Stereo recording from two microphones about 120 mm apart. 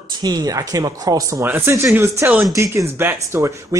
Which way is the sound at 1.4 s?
20° right (ahead or behind).